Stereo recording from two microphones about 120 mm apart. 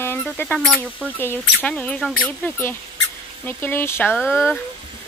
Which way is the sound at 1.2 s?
20° left (ahead or behind).